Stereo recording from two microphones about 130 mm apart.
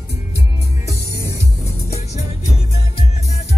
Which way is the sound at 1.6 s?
55° left (ahead or behind).